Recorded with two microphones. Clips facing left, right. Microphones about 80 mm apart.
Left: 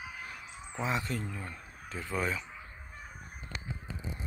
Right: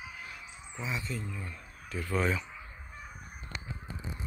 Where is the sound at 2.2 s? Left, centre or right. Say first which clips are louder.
Right 3 dB; centre.